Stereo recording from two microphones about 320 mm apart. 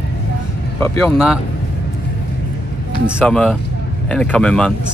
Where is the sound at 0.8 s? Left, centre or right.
Centre.